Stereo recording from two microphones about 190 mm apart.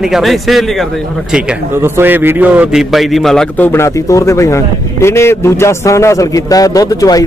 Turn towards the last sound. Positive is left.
turn(degrees=20)  # may be behind; listen again after turning